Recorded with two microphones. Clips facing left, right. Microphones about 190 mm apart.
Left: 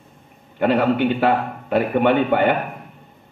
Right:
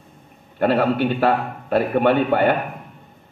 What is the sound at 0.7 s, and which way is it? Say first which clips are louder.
A man's voice: left 1 dB; 15° left (ahead or behind).